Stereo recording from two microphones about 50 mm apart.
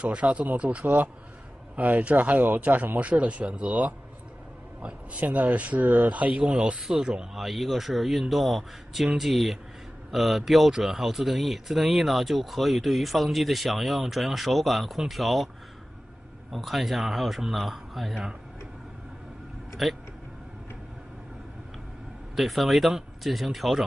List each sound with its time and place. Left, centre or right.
0.0 s a man's voice: right
5.2 s speech: right; by 7.2 s centre
7.3 s speech: centre
16.5 s speech: centre
19.8 s speech: centre
22.3 s speech: centre